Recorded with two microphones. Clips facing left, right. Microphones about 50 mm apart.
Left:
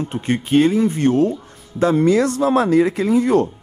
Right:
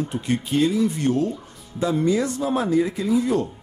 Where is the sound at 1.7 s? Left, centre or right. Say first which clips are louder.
Left 6 dB; left.